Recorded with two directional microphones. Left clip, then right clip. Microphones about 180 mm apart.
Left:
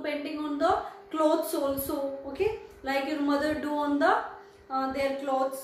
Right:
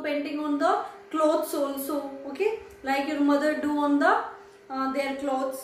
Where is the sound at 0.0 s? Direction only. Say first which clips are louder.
Right 3 dB; centre (ahead or behind).